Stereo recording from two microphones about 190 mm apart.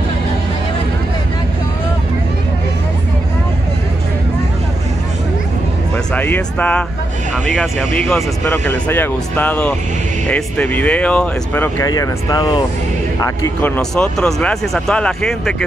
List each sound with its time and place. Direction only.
6.1 s speech: 10° left (ahead or behind)
8.1 s speech: 10° left (ahead or behind)
11.9 s speech: 20° left (ahead or behind); by 15.5 s 5° left (ahead or behind)